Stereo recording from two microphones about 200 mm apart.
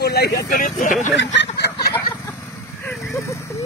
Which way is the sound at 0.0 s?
50° left (ahead or behind).